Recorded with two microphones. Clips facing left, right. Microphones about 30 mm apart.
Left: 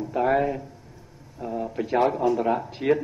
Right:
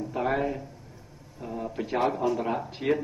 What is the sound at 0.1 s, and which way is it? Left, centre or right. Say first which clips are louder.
Speech: left 6 dB; centre.